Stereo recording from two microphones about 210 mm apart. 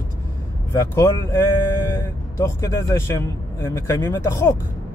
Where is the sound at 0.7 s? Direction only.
15° left (ahead or behind).